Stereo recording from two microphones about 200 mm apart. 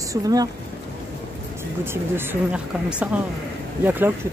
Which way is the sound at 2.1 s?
5° right (ahead or behind).